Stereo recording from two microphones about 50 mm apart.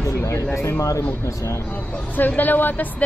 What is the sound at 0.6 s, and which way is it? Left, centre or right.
Speech, left.